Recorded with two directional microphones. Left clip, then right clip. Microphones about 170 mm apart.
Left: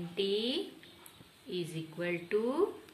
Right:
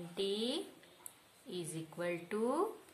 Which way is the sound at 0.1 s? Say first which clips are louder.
Left 5 dB; 65° right (ahead or behind).